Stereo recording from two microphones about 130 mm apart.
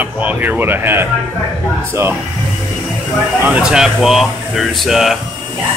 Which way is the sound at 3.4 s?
10° right (ahead or behind).